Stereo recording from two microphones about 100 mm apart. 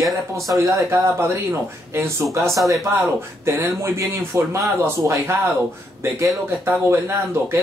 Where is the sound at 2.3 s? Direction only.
Centre (ahead or behind).